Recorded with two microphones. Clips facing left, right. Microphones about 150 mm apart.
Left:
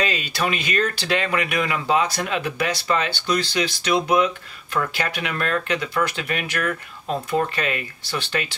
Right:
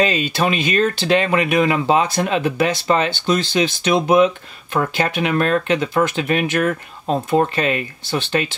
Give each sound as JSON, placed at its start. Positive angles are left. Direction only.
{"t": 0.0, "sound": "speech", "side_deg": -25}